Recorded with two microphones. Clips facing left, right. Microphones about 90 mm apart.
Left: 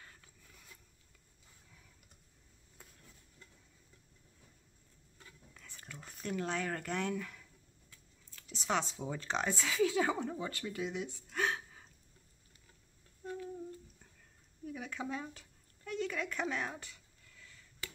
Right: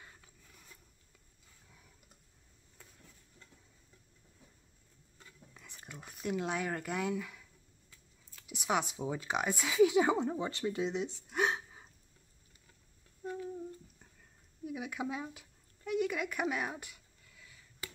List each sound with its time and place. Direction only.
0.0 s mechanisms: 15° right (ahead or behind)
5.2 s speech: 15° right (ahead or behind)
13.2 s humming: 15° right (ahead or behind)
14.6 s a sound: 10° right (ahead or behind)